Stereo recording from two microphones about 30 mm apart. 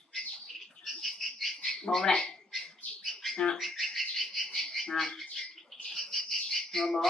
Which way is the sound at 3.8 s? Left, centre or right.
Centre.